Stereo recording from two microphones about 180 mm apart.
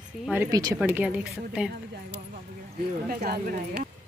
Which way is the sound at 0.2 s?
10° right (ahead or behind).